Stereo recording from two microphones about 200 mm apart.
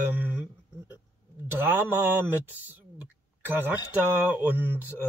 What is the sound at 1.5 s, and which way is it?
A man's voice, 10° right (ahead or behind).